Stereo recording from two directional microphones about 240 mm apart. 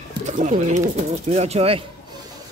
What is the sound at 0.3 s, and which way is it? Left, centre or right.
Speech, right.